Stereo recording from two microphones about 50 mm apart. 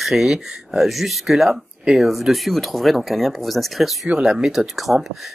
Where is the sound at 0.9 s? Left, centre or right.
Centre.